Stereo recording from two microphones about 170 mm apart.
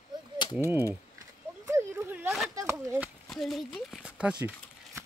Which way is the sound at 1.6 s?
15° right (ahead or behind).